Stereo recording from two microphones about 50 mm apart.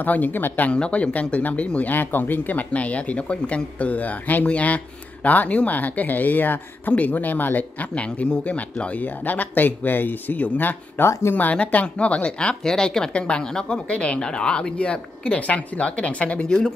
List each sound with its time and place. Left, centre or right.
0.0 s speech: left
0.7 s a woman's voice: left
1.9 s speech: left
7.9 s speech: left
10.3 s a woman's voice: left
10.6 s speech: left
11.1 s speech: left
11.5 s a woman's voice: left